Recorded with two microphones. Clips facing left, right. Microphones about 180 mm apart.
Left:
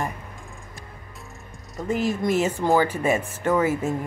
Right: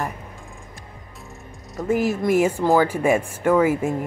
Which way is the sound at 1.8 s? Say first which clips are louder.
Right 3 dB; 10° right (ahead or behind).